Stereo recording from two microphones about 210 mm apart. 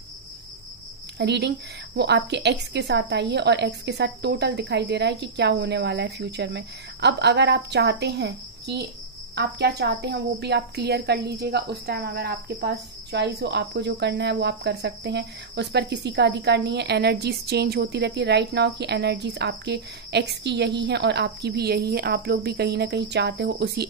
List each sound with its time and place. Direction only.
1.1 s a woman's voice: 55° right (ahead or behind)